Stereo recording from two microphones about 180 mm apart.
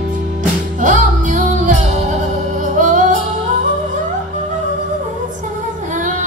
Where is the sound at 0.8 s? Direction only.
45° right (ahead or behind).